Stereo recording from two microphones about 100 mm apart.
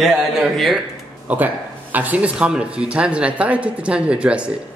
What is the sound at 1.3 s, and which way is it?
Speech, 15° right (ahead or behind).